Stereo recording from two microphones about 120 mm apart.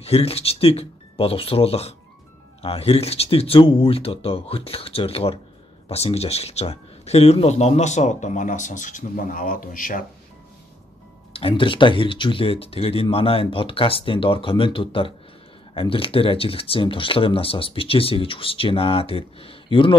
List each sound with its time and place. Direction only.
0.0 s speech: 55° left (ahead or behind); by 9.3 s 90° left
11.3 s speech: 45° left (ahead or behind)